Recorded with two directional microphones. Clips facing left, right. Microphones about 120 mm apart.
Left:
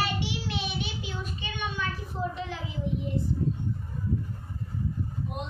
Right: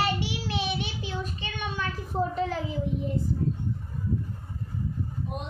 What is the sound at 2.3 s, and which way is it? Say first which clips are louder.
Speech: right 7 dB; 40° right (ahead or behind).